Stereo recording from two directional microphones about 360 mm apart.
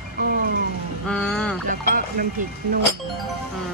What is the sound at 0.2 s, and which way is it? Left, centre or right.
Speech, right.